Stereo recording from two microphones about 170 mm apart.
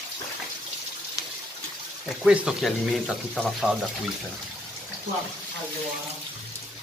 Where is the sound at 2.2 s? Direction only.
5° right (ahead or behind).